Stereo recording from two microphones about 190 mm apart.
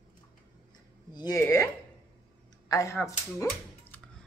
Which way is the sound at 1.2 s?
15° left (ahead or behind).